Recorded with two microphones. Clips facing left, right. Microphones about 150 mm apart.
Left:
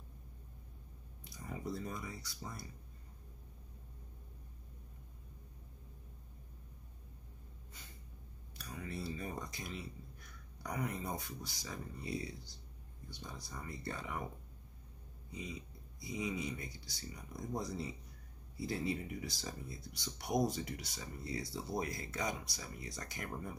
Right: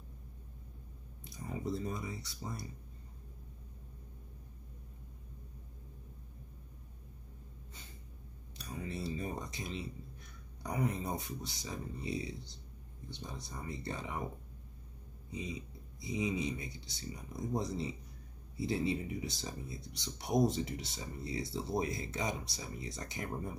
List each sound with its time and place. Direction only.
1.3 s speech: 25° right (ahead or behind)
8.5 s a sound: 25° right (ahead or behind)
10.6 s speech: 20° right (ahead or behind)
15.3 s speech: 20° right (ahead or behind)